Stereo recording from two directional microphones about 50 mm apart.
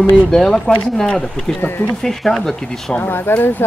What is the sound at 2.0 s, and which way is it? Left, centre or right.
Speech, centre.